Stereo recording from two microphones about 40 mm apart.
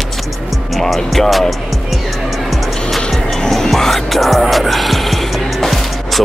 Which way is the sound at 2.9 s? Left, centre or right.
Centre.